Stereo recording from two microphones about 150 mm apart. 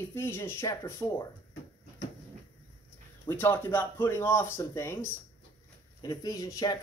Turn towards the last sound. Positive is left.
turn(degrees=25)  # may be behind; listen again after turning